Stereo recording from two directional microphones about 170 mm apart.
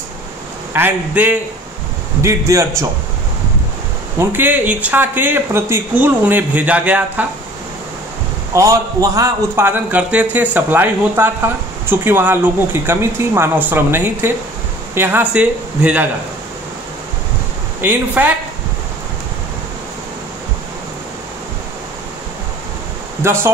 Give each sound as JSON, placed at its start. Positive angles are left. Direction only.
{"t": 0.7, "sound": "a man's voice", "side_deg": -10}
{"t": 4.2, "sound": "a man's voice", "side_deg": -10}
{"t": 8.5, "sound": "a man's voice", "side_deg": -20}
{"t": 17.7, "sound": "a man's voice", "side_deg": -10}
{"t": 23.2, "sound": "a man's voice", "side_deg": -15}